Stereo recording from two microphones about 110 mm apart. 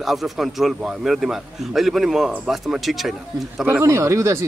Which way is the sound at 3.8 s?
25° right (ahead or behind).